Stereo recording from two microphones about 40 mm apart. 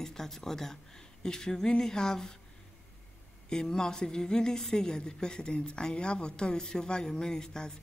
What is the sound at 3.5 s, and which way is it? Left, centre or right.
A woman's voice, centre.